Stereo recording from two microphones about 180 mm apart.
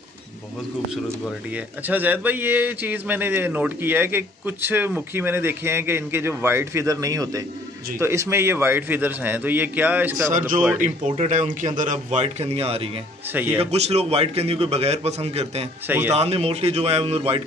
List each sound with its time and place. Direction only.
1.9 s a man's voice: 10° right (ahead or behind)
10.2 s speech: 45° right (ahead or behind)
13.3 s a man's voice: 10° right (ahead or behind)
13.6 s a man's voice: 35° right (ahead or behind)
15.9 s a man's voice: 10° right (ahead or behind)
16.2 s a man's voice: 35° right (ahead or behind)